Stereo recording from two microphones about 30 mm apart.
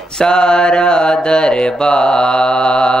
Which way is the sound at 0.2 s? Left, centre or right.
Left.